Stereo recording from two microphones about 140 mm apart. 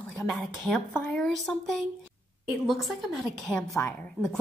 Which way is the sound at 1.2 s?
Centre (ahead or behind).